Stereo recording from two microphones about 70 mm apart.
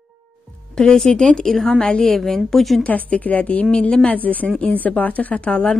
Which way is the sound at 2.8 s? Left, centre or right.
Left.